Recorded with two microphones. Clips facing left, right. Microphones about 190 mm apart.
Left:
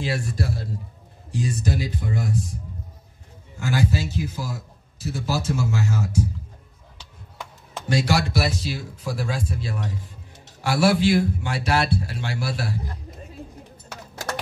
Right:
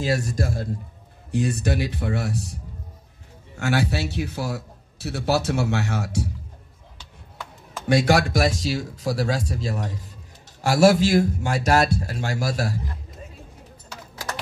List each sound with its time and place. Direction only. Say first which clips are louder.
0.0 s a man's voice: right 3 dB; 40° right (ahead or behind)
1.3 s a man's voice: right 3 dB; 60° right (ahead or behind)
3.5 s a man's voice: even; 70° right (ahead or behind)
7.9 s a man's voice: right 4 dB; 55° right (ahead or behind)